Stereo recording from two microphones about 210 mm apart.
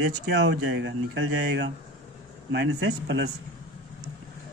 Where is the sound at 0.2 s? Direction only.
55° right (ahead or behind).